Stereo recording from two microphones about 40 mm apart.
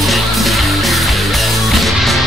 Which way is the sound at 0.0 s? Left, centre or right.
Centre.